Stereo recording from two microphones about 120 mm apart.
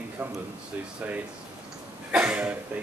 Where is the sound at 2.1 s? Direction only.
10° right (ahead or behind).